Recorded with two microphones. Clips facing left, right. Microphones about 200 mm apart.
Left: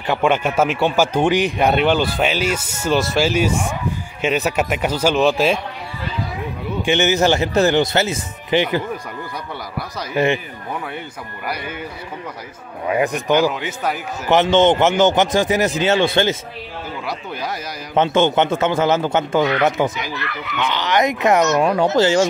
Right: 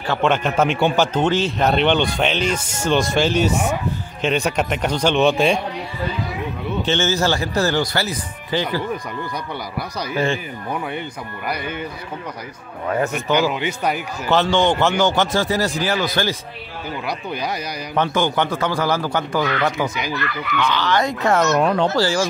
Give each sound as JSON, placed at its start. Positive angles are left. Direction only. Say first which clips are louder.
{"t": 0.0, "sound": "a man's voice", "louder": "left 1 dB", "side_deg": 10}
{"t": 6.8, "sound": "speech", "louder": "left 4 dB", "side_deg": 15}
{"t": 10.1, "sound": "speech", "louder": "left 4 dB", "side_deg": 20}
{"t": 11.4, "sound": "a man's voice", "louder": "right 1 dB", "side_deg": 5}
{"t": 12.8, "sound": "a man's voice", "louder": "left 2 dB", "side_deg": 10}
{"t": 13.1, "sound": "a man's voice", "louder": "left 2 dB", "side_deg": 0}
{"t": 14.3, "sound": "speech", "louder": "left 4 dB", "side_deg": 20}
{"t": 17.0, "sound": "a man's voice", "louder": "right 2 dB", "side_deg": 0}
{"t": 17.9, "sound": "speech", "louder": "left 4 dB", "side_deg": 25}
{"t": 21.5, "sound": "a man's voice", "louder": "left 1 dB", "side_deg": 0}
{"t": 21.8, "sound": "speech", "louder": "left 4 dB", "side_deg": 20}